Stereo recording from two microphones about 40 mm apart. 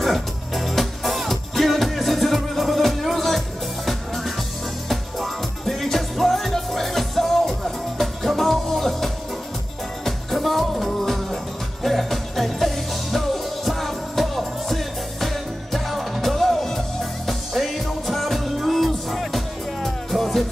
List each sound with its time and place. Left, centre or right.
0.0 s music: centre